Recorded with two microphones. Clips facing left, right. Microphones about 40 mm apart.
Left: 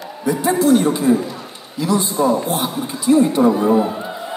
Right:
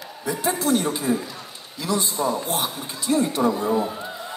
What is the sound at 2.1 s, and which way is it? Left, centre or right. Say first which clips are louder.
Speech: left 7 dB; left.